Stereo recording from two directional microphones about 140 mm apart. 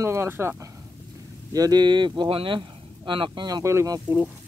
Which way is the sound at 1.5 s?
25° right (ahead or behind).